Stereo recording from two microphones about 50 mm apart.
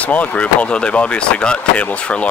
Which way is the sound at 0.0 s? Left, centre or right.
Left.